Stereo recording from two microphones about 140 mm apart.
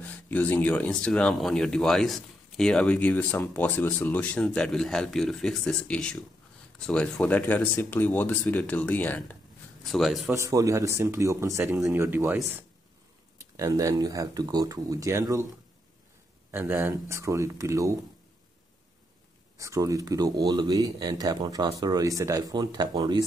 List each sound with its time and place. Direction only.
0.0 s speech: 10° left (ahead or behind)
9.8 s speech: centre (ahead or behind)
10.2 s speech: 20° right (ahead or behind)
13.4 s speech: 25° right (ahead or behind)
16.5 s speech: 15° right (ahead or behind)
19.5 s speech: 25° right (ahead or behind)